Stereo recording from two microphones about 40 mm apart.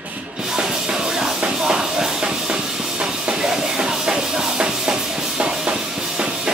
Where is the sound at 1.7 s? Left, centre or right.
Right.